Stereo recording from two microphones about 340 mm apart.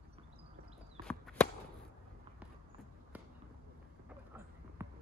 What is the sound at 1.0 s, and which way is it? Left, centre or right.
Chop, centre.